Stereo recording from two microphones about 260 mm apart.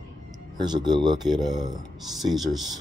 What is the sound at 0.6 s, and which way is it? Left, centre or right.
Speech, centre.